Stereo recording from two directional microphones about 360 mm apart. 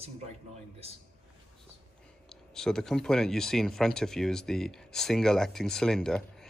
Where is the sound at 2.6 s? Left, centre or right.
Centre.